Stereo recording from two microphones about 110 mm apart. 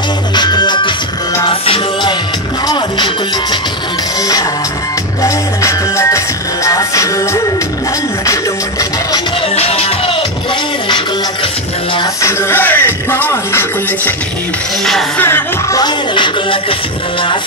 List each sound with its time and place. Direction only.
0.4 s music: 40° left (ahead or behind)
1.5 s music: 55° left (ahead or behind)
5.2 s music: 30° left (ahead or behind)
9.6 s music: 70° left (ahead or behind)
12.2 s music: 25° left (ahead or behind)
15.1 s music: 20° left (ahead or behind)
15.7 s music: 45° left (ahead or behind)